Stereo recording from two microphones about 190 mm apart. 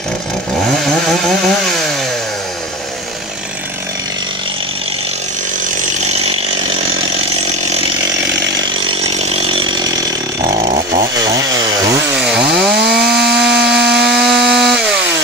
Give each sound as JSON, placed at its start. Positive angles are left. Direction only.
{"t": 0.8, "sound": "chainsaw", "side_deg": 5}
{"t": 6.0, "sound": "chainsaw", "side_deg": -30}
{"t": 8.8, "sound": "chainsaw", "side_deg": -30}
{"t": 11.1, "sound": "chainsaw", "side_deg": -20}
{"t": 12.1, "sound": "chainsaw", "side_deg": -5}
{"t": 12.9, "sound": "wood", "side_deg": 0}